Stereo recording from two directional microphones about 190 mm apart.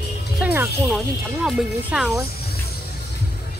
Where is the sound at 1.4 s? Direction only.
Centre (ahead or behind).